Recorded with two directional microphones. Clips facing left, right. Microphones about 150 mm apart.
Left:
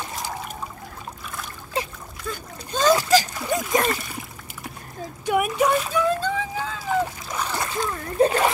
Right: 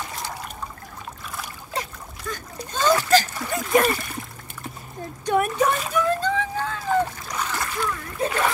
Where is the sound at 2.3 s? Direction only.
15° left (ahead or behind).